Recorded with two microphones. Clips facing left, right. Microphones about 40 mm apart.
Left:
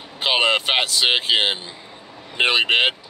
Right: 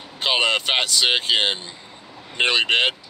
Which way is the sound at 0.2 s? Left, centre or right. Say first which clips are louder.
Left 1 dB; centre.